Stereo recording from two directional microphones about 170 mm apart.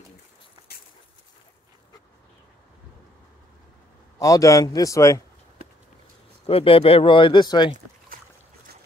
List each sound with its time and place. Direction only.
4.2 s a man's voice: 20° left (ahead or behind)
6.4 s speech: 35° left (ahead or behind)